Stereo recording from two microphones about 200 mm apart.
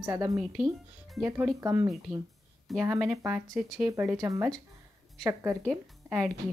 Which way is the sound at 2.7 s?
Centre (ahead or behind).